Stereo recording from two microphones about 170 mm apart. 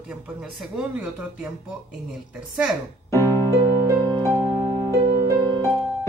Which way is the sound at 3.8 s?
20° right (ahead or behind).